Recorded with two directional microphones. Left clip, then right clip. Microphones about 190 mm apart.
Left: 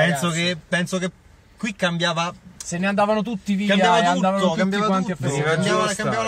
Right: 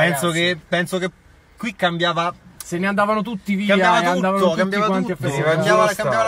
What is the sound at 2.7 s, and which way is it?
Speech, 5° right (ahead or behind).